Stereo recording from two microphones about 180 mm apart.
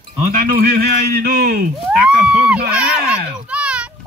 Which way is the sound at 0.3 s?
50° right (ahead or behind).